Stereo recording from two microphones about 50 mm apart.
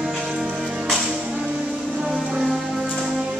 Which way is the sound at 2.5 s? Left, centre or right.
Centre.